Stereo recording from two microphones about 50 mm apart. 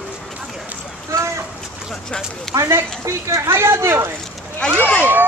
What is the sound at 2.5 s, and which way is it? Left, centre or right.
Speech, right.